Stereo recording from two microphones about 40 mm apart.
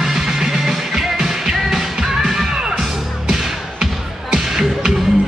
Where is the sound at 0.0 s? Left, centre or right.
Centre.